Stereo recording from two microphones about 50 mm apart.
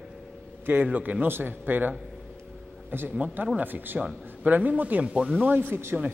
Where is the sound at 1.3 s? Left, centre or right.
Right.